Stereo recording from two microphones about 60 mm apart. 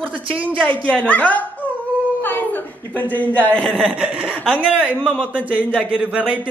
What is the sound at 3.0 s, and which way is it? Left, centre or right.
Speech, left.